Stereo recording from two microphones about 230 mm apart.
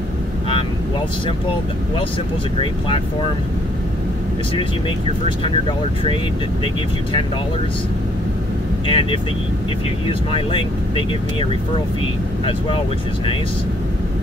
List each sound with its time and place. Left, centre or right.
6.6 s speech: left
8.8 s speech: left
12.4 s speech: left